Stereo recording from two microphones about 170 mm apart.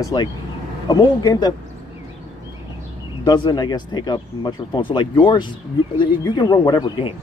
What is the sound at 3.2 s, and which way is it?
Speech, 25° left (ahead or behind).